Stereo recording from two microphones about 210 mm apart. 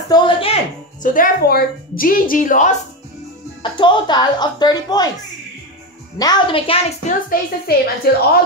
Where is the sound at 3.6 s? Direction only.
20° left (ahead or behind).